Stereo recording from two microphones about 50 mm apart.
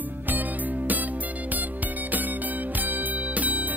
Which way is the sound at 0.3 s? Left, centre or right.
Right.